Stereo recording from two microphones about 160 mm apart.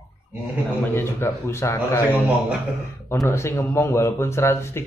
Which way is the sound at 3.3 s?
15° left (ahead or behind).